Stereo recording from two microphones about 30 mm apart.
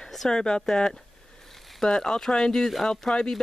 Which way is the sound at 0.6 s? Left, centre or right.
Centre.